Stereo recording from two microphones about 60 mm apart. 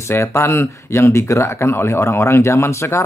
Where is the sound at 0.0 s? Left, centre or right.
Left.